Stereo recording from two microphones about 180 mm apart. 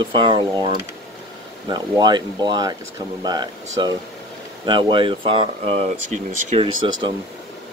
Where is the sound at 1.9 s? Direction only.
20° right (ahead or behind).